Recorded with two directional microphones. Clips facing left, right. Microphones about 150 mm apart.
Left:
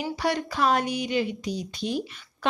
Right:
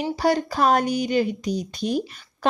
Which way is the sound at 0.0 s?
35° right (ahead or behind).